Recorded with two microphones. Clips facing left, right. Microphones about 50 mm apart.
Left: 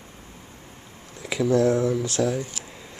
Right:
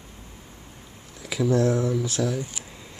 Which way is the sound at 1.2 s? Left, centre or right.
Centre.